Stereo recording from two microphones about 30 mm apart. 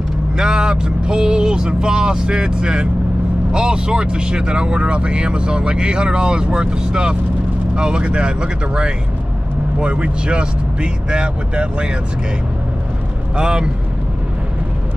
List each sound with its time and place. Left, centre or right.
0.4 s speech: right
13.4 s speech: right